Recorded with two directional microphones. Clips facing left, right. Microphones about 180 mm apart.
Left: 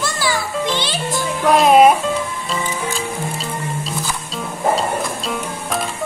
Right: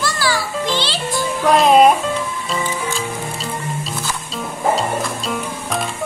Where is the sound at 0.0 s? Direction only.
20° left (ahead or behind).